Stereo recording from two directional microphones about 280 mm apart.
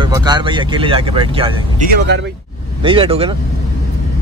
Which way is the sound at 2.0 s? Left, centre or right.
Right.